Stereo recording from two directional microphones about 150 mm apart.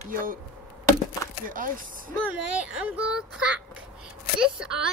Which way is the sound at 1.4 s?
65° right (ahead or behind).